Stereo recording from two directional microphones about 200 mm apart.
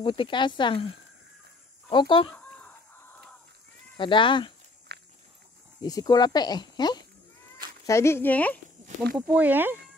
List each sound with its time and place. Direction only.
0.0 s speech: 25° left (ahead or behind)
1.9 s speech: 25° left (ahead or behind)
2.3 s a sound: 5° left (ahead or behind)
3.9 s speech: 25° left (ahead or behind)
4.9 s walk: 55° right (ahead or behind)
5.8 s speech: 20° left (ahead or behind)
9.1 s speech: 5° right (ahead or behind)